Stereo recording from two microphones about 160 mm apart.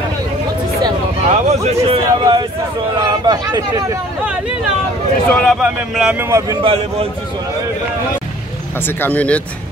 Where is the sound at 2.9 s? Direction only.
25° right (ahead or behind).